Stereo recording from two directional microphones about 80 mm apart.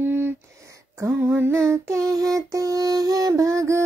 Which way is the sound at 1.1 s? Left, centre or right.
Right.